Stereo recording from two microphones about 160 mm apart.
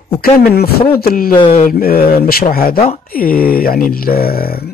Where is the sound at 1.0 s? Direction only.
65° left (ahead or behind).